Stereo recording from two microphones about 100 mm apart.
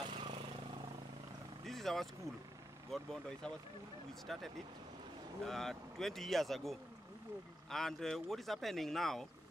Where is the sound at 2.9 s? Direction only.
5° left (ahead or behind).